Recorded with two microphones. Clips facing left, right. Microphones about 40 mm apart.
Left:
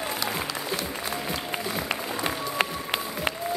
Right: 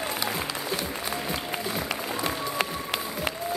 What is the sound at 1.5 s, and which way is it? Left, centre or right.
Applause, left.